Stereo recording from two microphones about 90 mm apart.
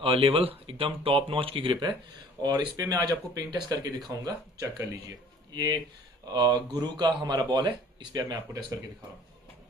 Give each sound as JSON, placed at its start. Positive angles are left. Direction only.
{"t": 0.0, "sound": "speech", "side_deg": -80}
{"t": 2.4, "sound": "speech", "side_deg": -45}